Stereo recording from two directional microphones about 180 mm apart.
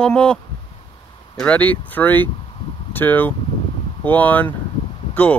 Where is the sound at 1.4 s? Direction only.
10° left (ahead or behind).